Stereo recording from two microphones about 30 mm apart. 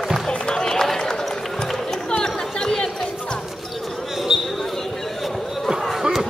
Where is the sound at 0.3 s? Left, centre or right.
Left; by 2.0 s centre.